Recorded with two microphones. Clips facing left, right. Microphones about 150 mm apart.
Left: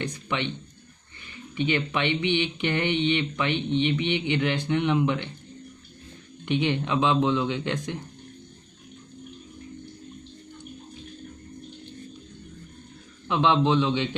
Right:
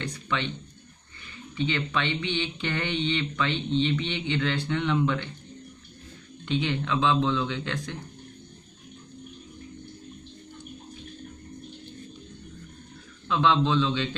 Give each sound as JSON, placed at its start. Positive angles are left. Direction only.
{"t": 0.0, "sound": "speech", "side_deg": 20}
{"t": 1.6, "sound": "speech", "side_deg": 15}
{"t": 6.4, "sound": "speech", "side_deg": 15}
{"t": 13.3, "sound": "speech", "side_deg": 20}